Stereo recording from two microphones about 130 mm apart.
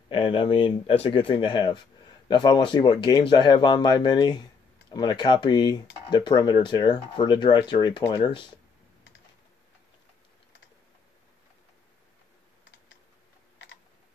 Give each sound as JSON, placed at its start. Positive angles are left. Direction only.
{"t": 0.1, "sound": "speech", "side_deg": 40}